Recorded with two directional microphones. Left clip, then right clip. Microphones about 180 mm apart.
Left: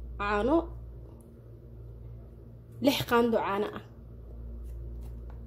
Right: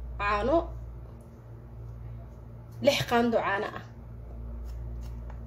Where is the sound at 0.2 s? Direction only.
40° left (ahead or behind).